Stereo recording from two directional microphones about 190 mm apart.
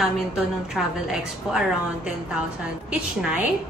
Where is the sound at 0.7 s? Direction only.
5° right (ahead or behind).